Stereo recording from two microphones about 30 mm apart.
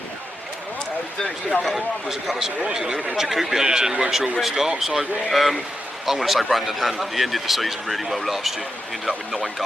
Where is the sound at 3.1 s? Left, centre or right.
Centre.